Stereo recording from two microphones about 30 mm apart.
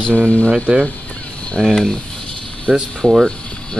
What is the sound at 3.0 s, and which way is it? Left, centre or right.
Speech, centre.